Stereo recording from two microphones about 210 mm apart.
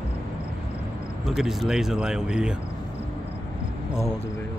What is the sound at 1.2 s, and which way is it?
Speech, centre (ahead or behind).